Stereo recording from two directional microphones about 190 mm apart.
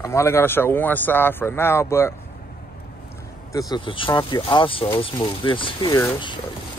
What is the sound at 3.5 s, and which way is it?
Speech, 20° left (ahead or behind).